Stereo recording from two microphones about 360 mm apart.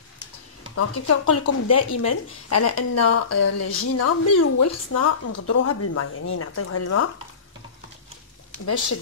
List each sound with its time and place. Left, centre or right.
0.7 s speech: left